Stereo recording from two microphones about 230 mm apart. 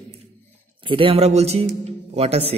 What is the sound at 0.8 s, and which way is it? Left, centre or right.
Speech, right.